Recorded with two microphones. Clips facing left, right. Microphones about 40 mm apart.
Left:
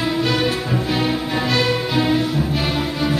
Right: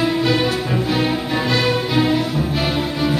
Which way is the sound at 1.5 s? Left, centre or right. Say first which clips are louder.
Right 1 dB; centre.